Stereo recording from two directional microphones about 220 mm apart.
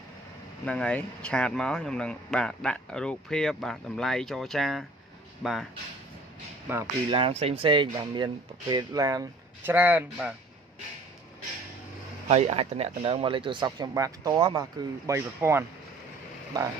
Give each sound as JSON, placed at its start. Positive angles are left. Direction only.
{"t": 0.7, "sound": "speech", "side_deg": 5}
{"t": 7.1, "sound": "speech", "side_deg": -25}
{"t": 12.3, "sound": "speech", "side_deg": -30}